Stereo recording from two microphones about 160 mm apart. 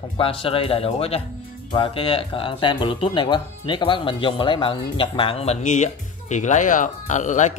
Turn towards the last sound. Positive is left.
turn(degrees=50)  # may be behind; listen again after turning